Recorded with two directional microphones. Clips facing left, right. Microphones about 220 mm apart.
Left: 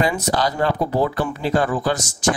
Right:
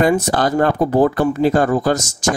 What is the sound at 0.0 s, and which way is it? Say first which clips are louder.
Speech: right 5 dB; 50° right (ahead or behind).